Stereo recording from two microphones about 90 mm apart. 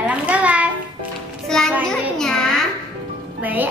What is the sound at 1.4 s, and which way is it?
Music, 5° left (ahead or behind).